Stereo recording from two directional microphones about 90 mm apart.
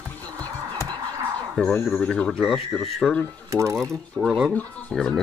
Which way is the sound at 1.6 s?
5° left (ahead or behind).